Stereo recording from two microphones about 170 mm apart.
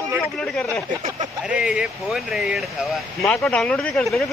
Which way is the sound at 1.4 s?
5° right (ahead or behind).